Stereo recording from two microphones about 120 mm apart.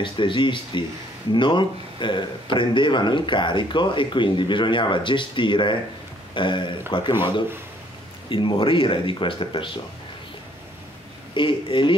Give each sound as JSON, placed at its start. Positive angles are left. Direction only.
{"t": 0.0, "sound": "speech", "side_deg": 45}
{"t": 8.3, "sound": "speech", "side_deg": 45}
{"t": 11.3, "sound": "speech", "side_deg": 45}